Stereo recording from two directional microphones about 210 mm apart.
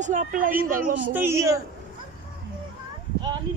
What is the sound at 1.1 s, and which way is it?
Speech, 10° right (ahead or behind).